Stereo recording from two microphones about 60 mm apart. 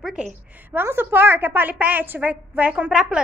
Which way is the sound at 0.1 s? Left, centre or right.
Centre.